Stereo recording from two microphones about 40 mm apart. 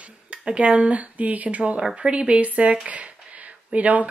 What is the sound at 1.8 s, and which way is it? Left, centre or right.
Speech, right.